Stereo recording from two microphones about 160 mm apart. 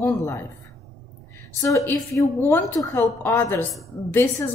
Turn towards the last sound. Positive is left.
turn(degrees=15)  # may be behind; listen again after turning